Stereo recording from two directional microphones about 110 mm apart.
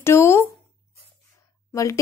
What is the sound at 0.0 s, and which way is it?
Speech, 25° left (ahead or behind).